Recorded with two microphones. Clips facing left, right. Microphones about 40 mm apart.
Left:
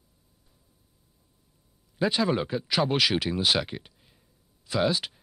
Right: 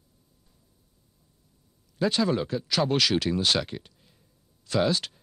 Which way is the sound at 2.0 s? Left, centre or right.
Centre.